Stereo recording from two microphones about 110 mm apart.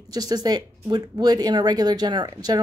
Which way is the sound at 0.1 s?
35° right (ahead or behind).